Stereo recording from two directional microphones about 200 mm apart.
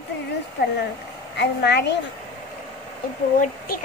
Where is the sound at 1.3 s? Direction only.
60° left (ahead or behind).